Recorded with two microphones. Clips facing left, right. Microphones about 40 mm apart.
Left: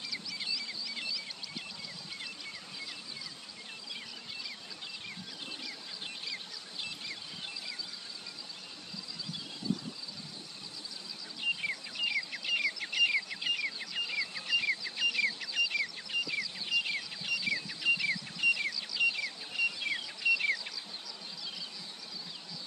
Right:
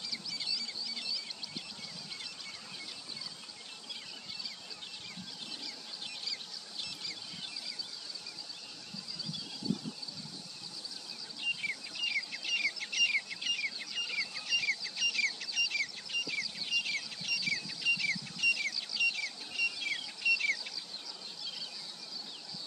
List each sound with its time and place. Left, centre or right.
6.0 s a sound: left
11.4 s bird: centre
18.8 s music: centre